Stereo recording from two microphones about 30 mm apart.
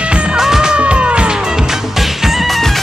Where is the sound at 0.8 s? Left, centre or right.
Right; by 2.5 s centre.